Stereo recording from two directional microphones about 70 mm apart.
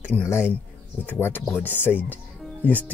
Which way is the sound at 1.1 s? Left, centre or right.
Left.